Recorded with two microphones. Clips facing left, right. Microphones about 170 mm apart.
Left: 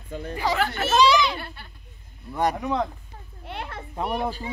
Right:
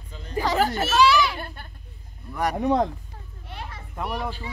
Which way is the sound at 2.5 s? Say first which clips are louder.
Right 4 dB; 40° right (ahead or behind).